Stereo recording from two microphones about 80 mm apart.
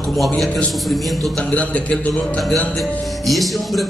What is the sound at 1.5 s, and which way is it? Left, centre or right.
Speech, centre.